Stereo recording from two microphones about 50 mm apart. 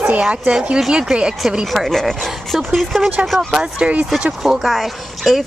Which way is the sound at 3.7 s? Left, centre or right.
Right.